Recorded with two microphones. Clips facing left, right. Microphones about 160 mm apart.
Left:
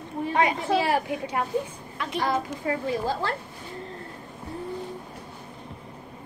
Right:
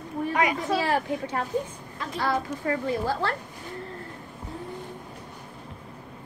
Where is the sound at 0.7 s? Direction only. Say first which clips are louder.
Left 2 dB; 15° left (ahead or behind).